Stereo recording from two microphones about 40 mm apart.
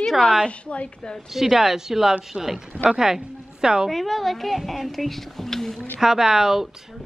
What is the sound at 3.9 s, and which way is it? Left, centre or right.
A woman's voice, centre.